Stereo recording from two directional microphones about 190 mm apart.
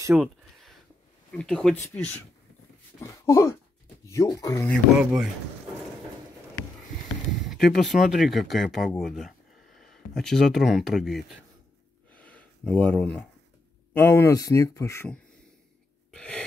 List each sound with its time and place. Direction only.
0.1 s a sound: centre (ahead or behind)
1.3 s speech: 5° left (ahead or behind)
3.0 s speech: 15° left (ahead or behind)
4.6 s speech: centre (ahead or behind)
7.6 s speech: centre (ahead or behind)
12.1 s a sound: 5° left (ahead or behind)
13.9 s speech: 15° left (ahead or behind)
16.1 s gasp: 5° left (ahead or behind)